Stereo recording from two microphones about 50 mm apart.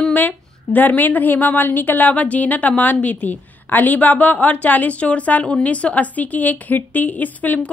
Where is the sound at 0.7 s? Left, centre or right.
Left.